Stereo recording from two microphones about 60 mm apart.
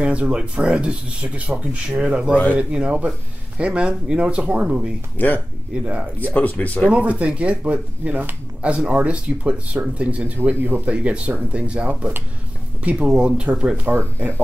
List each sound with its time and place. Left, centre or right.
0.0 s speech: centre
5.1 s speech: left
6.9 s speech: right
10.5 s speech: right
10.9 s speech: centre
13.8 s speech: right